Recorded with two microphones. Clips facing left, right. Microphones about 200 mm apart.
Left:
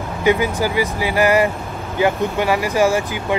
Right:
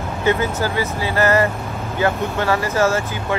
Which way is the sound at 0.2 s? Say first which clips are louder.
Left 2 dB; 15° left (ahead or behind).